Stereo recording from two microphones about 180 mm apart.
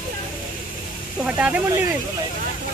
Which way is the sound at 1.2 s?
5° right (ahead or behind).